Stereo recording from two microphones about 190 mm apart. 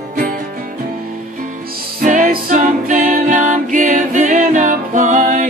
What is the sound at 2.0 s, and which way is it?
Music, 45° right (ahead or behind).